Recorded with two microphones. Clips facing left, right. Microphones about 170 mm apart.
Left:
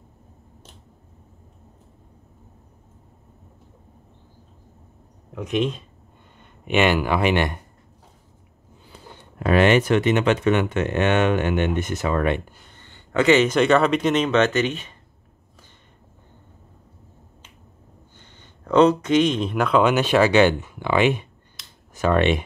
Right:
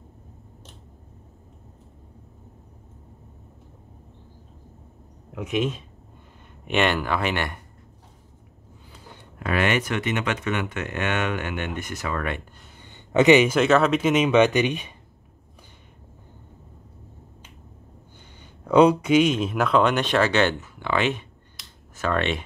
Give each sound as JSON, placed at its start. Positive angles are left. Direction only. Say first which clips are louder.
{"t": 5.3, "sound": "speech", "louder": "left 2 dB", "side_deg": -5}
{"t": 9.4, "sound": "speech", "louder": "left 7 dB", "side_deg": 30}
{"t": 12.7, "sound": "speech", "louder": "right 2 dB", "side_deg": -15}
{"t": 18.4, "sound": "speech", "louder": "even", "side_deg": -10}